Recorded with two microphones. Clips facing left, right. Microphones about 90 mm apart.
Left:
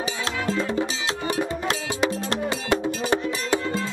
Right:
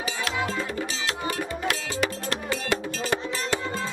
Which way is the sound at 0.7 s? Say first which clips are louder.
Left 4 dB; 25° left (ahead or behind).